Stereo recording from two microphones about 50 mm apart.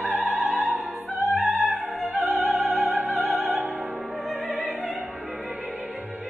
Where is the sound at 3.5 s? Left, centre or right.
Right.